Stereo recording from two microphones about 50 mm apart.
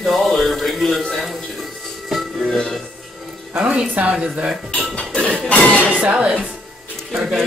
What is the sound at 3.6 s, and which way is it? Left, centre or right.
Speech, right.